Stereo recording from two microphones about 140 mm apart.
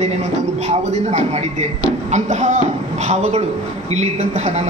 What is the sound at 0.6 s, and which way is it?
A man's voice, 55° right (ahead or behind).